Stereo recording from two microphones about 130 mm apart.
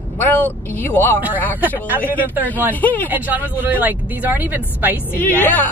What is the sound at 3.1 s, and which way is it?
Speech, 15° right (ahead or behind).